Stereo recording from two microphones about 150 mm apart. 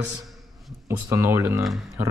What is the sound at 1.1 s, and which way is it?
Speech, 20° right (ahead or behind).